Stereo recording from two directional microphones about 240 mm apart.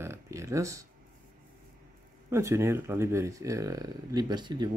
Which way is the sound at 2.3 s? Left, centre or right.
Centre.